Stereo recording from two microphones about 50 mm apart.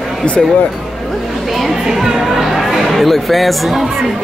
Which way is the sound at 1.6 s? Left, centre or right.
Centre.